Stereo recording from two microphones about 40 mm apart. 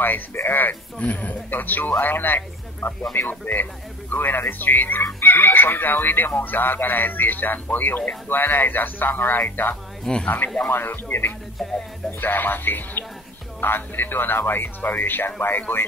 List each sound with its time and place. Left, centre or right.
0.0 s speech: left
1.0 s speech: left
10.7 s speech: left